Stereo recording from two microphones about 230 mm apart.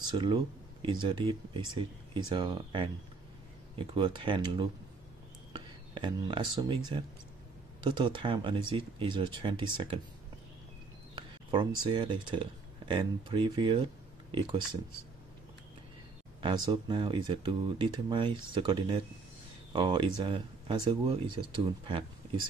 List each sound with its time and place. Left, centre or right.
0.1 s speech: centre
7.8 s speech: centre
11.1 s speech: centre
16.3 s speech: centre